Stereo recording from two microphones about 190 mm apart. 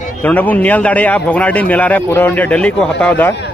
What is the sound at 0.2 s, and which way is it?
A man's voice, 10° left (ahead or behind).